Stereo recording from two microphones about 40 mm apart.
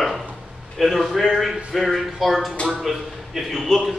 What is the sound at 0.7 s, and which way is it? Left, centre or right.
A man's voice, centre.